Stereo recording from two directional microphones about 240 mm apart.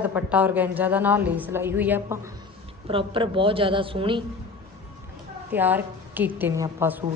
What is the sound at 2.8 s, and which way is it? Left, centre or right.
A woman's voice, right.